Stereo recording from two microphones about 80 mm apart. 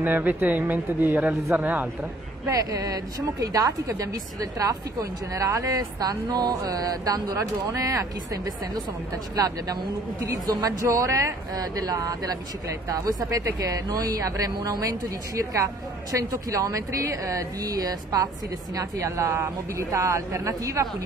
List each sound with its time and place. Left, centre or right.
0.0 s speech: right
2.4 s speech: right
18.8 s speech: right